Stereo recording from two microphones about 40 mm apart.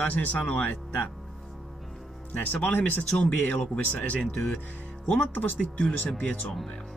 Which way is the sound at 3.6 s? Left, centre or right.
Left.